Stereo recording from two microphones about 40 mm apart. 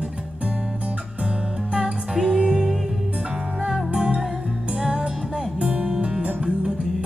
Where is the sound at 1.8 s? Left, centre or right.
Right.